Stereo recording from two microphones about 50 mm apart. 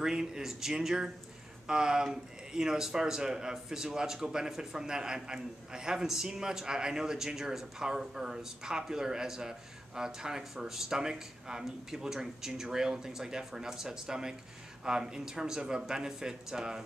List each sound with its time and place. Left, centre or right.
0.0 s speech: centre